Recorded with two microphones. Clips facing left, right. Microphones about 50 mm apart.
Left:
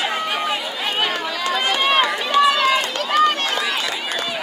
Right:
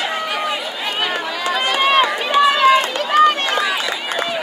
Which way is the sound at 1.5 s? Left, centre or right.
Right.